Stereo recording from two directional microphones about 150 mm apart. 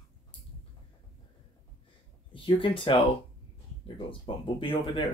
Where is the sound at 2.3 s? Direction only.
35° left (ahead or behind).